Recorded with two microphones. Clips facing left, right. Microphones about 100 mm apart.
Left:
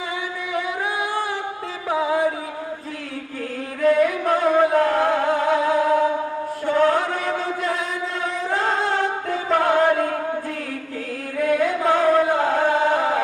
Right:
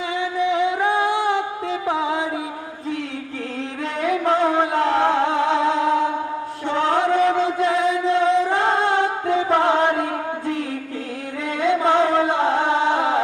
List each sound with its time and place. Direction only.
0.4 s music: 20° right (ahead or behind)
3.8 s music: 25° right (ahead or behind)
6.6 s chant: 25° right (ahead or behind)
8.5 s music: 25° right (ahead or behind)
11.4 s music: 25° right (ahead or behind)